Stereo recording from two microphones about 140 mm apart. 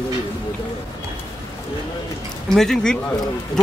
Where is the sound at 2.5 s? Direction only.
5° left (ahead or behind).